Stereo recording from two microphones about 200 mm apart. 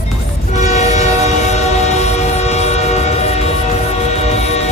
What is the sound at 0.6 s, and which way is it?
Train, 35° left (ahead or behind).